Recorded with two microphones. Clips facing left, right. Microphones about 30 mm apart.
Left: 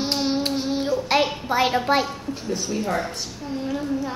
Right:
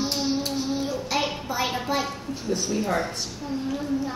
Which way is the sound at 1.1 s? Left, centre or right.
Left.